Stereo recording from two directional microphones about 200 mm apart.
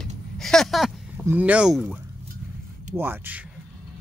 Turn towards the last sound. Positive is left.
turn(degrees=-10)  # may be behind; listen again after turning